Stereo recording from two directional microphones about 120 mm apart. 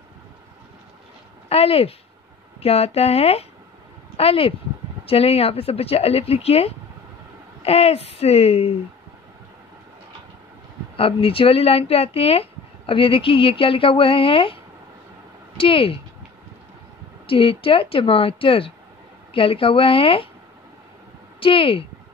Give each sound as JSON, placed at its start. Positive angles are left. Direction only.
{"t": 1.5, "sound": "speech", "side_deg": 55}
{"t": 11.0, "sound": "speech", "side_deg": 50}
{"t": 17.3, "sound": "speech", "side_deg": 50}
{"t": 21.4, "sound": "speech", "side_deg": 50}